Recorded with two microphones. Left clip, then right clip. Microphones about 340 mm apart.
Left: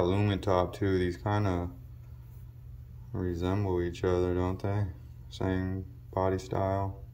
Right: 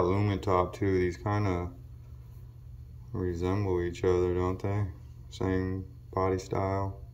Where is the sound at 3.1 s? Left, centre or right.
Centre.